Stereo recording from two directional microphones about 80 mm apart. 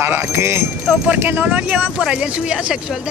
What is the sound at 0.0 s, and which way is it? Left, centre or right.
Speech, right.